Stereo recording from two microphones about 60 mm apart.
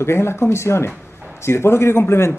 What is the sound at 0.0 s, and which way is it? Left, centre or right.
Speech, left.